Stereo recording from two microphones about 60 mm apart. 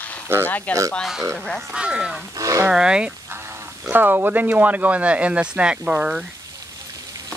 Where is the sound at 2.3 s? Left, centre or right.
Right.